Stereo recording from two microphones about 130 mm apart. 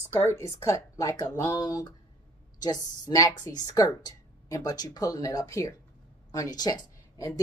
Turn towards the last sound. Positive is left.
turn(degrees=25)  # may be behind; listen again after turning